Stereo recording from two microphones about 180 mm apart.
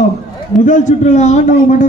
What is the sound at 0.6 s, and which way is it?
Speech, 45° left (ahead or behind).